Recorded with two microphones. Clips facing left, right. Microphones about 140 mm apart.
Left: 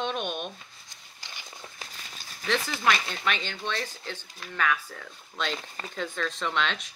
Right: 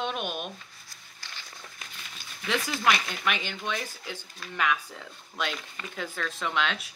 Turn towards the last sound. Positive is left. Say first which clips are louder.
# even
turn(degrees=-5)  # may be behind; listen again after turning